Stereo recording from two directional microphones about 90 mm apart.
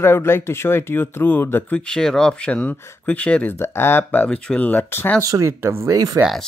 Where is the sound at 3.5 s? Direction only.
25° left (ahead or behind).